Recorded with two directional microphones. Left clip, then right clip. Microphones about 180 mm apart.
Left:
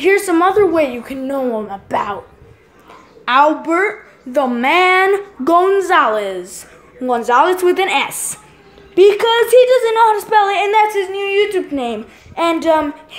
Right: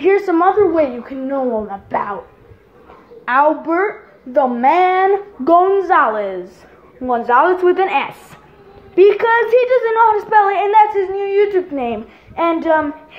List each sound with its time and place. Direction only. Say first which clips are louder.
0.0 s a woman's voice: even; 20° left (ahead or behind)
3.3 s a woman's voice: left 2 dB; 25° left (ahead or behind)